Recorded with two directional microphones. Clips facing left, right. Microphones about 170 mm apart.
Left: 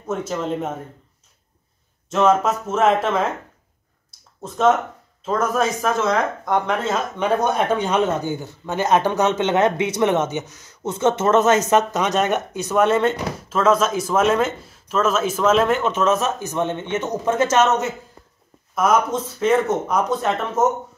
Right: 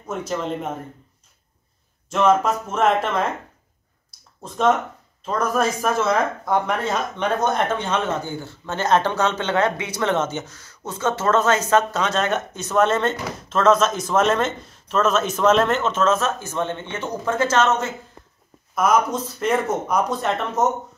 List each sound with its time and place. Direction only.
0.1 s speech: centre (ahead or behind)
2.0 s speech: centre (ahead or behind)
4.4 s speech: centre (ahead or behind); by 17.8 s 20° left (ahead or behind)
18.8 s speech: centre (ahead or behind)
20.6 s speech: 25° left (ahead or behind)